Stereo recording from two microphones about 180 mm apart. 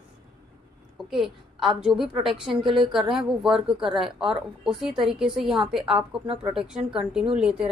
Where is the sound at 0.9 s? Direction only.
Centre (ahead or behind).